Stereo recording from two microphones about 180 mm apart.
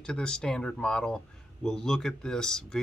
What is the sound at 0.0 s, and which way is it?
Speech, 5° left (ahead or behind).